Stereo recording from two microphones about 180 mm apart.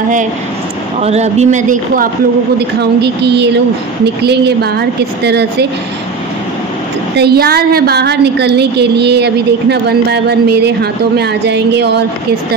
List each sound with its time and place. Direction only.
1.0 s speech: 40° right (ahead or behind)
2.8 s a woman's voice: 70° right (ahead or behind)
7.2 s a woman's voice: 60° right (ahead or behind)